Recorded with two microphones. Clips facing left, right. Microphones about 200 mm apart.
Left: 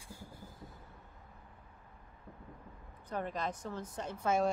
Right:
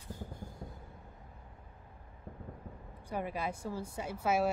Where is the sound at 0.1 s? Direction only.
10° left (ahead or behind).